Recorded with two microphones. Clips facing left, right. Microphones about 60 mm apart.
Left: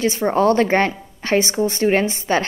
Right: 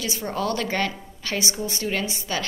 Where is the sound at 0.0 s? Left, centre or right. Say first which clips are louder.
Left 10 dB; left.